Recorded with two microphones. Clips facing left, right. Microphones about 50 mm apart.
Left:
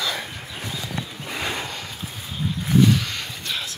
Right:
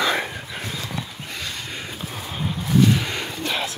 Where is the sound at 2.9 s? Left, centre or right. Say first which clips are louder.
Right 1 dB; centre.